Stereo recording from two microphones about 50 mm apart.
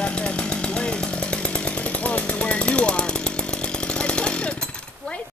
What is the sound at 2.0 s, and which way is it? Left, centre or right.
Jackhammer, left.